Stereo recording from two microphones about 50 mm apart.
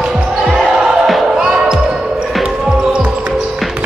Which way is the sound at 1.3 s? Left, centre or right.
Centre.